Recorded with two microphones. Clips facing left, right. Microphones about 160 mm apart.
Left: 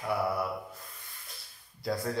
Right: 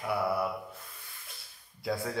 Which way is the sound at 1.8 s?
Centre (ahead or behind).